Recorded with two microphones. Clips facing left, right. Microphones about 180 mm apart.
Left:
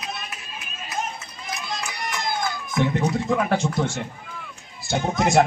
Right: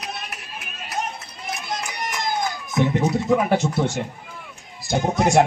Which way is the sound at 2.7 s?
15° right (ahead or behind).